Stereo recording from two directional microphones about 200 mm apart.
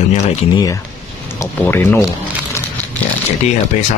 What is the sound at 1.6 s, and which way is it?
Speech, 10° left (ahead or behind).